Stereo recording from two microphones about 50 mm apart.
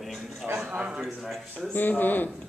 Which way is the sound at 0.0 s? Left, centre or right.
Centre.